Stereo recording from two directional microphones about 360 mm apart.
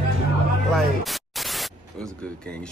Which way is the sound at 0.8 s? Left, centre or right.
Centre.